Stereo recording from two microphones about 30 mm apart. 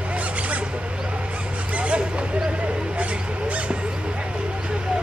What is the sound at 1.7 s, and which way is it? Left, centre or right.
Vehicle, right.